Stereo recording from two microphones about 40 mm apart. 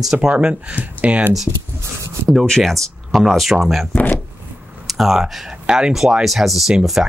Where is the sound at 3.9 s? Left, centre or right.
Left.